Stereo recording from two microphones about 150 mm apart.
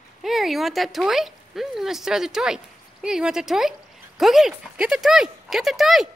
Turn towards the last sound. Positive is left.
turn(degrees=0)  # may be behind; listen again after turning